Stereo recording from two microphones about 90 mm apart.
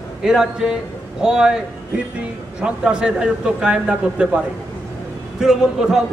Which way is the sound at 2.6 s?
10° right (ahead or behind).